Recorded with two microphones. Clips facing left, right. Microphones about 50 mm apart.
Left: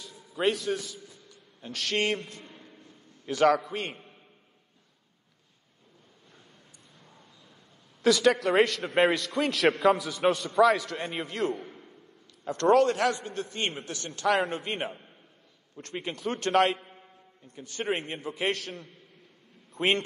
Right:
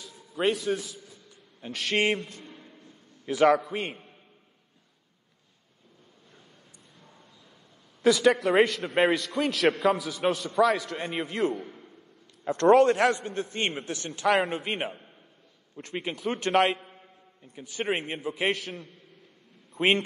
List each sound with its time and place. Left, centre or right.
0.4 s a man's voice: centre
8.0 s a man's voice: centre
12.4 s a man's voice: right; by 20.0 s centre